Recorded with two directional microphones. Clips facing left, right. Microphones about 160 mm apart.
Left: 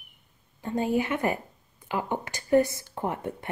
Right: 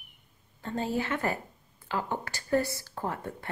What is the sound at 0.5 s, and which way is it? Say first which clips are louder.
Speech: left 5 dB; 15° left (ahead or behind).